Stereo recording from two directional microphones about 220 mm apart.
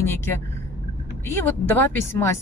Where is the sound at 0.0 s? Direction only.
10° left (ahead or behind).